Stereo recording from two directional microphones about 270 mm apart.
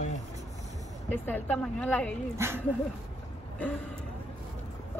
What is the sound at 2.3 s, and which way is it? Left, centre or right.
Speech, centre.